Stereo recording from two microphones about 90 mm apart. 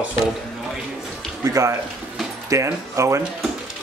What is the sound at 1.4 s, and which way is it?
Speech, 35° right (ahead or behind).